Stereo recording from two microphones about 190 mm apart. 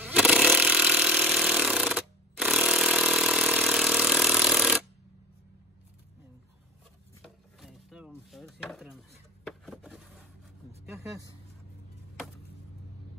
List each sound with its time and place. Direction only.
0.0 s a sound: 5° right (ahead or behind)
7.2 s pulleys: centre (ahead or behind)
8.3 s chopping: centre (ahead or behind)
9.5 s wood: centre (ahead or behind)
10.9 s vehicle: 15° right (ahead or behind)